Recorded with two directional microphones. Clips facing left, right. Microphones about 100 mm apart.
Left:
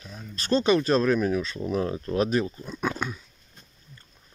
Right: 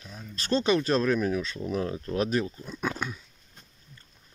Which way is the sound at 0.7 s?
10° left (ahead or behind).